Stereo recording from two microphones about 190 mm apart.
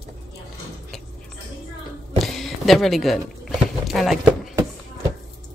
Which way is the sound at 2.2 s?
Centre (ahead or behind).